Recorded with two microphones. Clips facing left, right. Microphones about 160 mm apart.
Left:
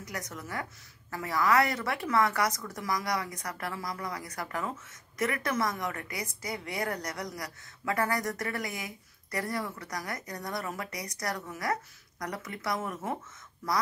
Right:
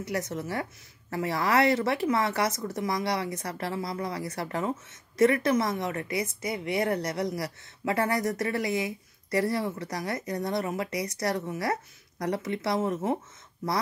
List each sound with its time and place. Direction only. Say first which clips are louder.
0.0 s speech: right 8 dB; 30° right (ahead or behind)